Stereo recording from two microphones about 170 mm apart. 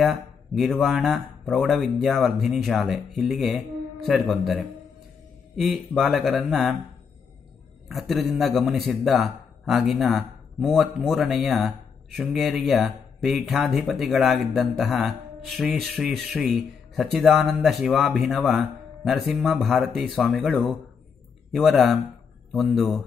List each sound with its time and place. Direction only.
0.0 s a man's voice: centre (ahead or behind)
7.9 s a man's voice: centre (ahead or behind)